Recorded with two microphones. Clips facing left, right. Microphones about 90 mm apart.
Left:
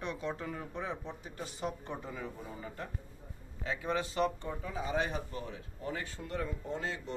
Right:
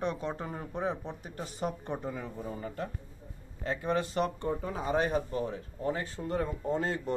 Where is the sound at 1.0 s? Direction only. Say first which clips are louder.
Right 3 dB; 50° right (ahead or behind).